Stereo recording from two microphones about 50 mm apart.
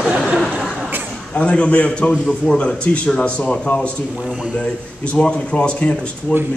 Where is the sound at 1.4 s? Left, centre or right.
Left.